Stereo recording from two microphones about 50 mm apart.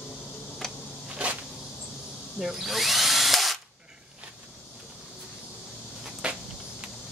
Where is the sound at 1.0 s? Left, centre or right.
Right.